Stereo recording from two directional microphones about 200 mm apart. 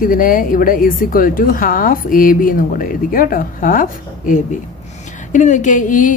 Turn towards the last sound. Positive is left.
turn(degrees=40)  # may be behind; listen again after turning